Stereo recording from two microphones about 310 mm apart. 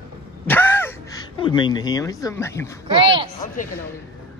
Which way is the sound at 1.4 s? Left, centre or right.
Centre.